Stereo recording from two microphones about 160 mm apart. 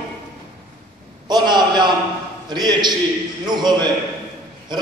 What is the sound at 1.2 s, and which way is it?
A man's voice, 25° right (ahead or behind).